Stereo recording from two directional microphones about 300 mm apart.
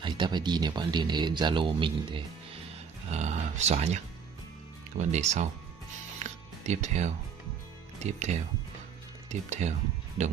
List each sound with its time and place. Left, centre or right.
0.0 s speech: centre
6.6 s speech: right